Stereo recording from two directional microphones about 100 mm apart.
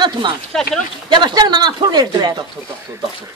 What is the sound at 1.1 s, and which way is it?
Speech, 45° right (ahead or behind).